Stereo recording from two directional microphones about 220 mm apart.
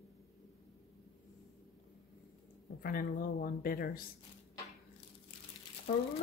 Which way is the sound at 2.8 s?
40° left (ahead or behind).